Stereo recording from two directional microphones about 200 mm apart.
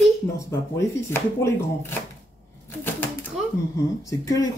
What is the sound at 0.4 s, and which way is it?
Speech, 15° left (ahead or behind).